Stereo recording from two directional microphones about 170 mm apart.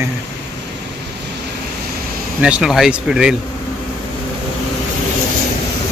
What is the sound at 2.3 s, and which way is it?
Speech, 5° right (ahead or behind).